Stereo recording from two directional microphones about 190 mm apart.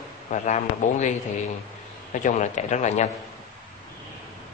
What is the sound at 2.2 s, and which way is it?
Speech, 40° left (ahead or behind).